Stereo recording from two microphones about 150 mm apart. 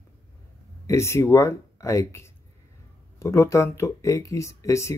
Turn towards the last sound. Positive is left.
turn(degrees=20)  # may be behind; listen again after turning